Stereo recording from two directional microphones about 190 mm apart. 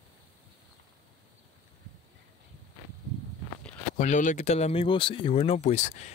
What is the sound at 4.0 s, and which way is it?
Speech, 40° left (ahead or behind).